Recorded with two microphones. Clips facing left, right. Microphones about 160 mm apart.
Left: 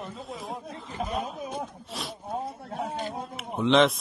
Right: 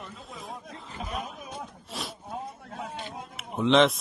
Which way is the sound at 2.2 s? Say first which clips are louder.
Left 4 dB; 35° left (ahead or behind).